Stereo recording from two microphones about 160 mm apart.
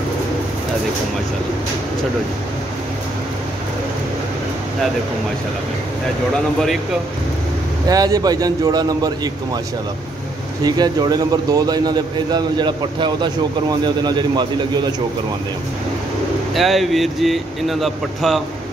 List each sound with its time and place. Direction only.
7.9 s a man's voice: 25° right (ahead or behind)
10.6 s a man's voice: 25° right (ahead or behind)
16.5 s speech: centre (ahead or behind)